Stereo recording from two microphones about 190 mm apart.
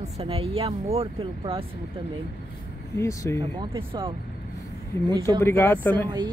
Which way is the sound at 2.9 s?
15° left (ahead or behind).